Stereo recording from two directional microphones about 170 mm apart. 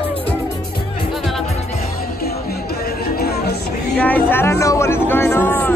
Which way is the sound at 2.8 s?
65° left (ahead or behind).